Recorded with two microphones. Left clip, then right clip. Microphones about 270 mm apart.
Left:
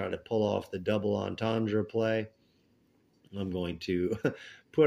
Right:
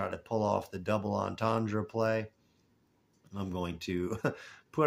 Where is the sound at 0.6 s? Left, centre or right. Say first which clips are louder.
Left 2 dB; right.